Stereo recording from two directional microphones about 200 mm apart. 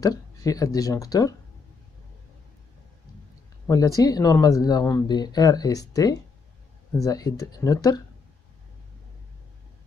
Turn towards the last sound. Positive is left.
turn(degrees=20)  # may be behind; listen again after turning